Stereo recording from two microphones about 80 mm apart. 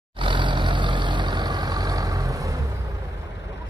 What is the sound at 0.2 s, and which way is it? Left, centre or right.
Vehicle, right.